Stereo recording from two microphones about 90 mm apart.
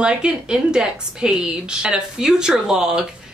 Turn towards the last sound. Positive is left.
turn(degrees=-5)  # may be behind; listen again after turning